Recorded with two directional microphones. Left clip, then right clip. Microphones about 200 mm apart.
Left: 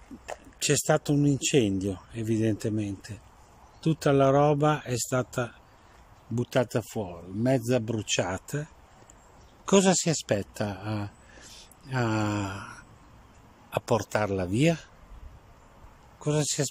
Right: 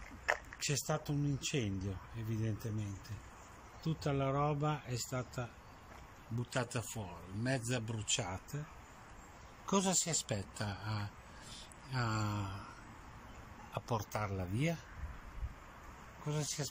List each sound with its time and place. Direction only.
0.6 s speech: 55° left (ahead or behind)
9.7 s speech: 55° left (ahead or behind)
13.7 s speech: 55° left (ahead or behind)
16.3 s speech: 55° left (ahead or behind)